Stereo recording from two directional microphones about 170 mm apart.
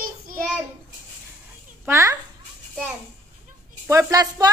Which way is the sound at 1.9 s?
20° right (ahead or behind).